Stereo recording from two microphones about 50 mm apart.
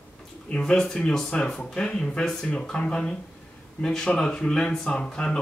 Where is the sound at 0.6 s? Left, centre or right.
Centre.